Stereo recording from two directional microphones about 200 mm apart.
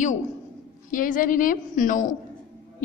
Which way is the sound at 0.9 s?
40° left (ahead or behind).